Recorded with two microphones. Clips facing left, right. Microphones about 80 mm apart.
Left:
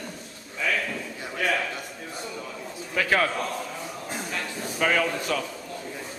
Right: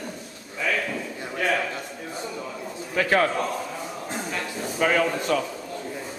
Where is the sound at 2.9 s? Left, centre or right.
Centre.